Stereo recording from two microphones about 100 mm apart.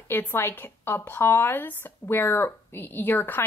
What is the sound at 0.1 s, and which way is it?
Speech, 20° left (ahead or behind).